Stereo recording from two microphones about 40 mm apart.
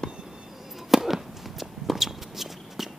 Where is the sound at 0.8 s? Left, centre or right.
Centre.